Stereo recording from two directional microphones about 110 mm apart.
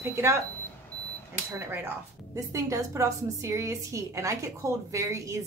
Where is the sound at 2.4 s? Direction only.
30° right (ahead or behind).